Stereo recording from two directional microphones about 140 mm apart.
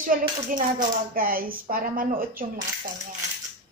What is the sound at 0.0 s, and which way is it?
Speech, 75° right (ahead or behind).